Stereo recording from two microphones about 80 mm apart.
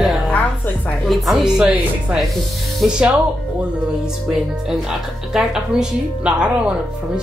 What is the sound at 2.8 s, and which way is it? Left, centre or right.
Speech, centre.